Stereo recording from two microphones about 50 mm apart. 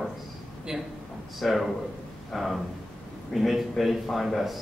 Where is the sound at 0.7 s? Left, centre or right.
Centre.